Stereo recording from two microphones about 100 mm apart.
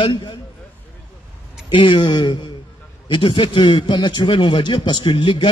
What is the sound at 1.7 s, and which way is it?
A man's voice, 55° left (ahead or behind).